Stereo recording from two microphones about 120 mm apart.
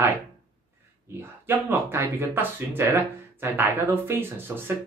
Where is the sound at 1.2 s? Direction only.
15° right (ahead or behind).